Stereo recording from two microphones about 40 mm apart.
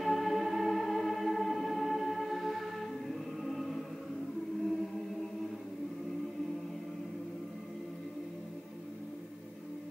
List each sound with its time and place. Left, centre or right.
0.0 s music: centre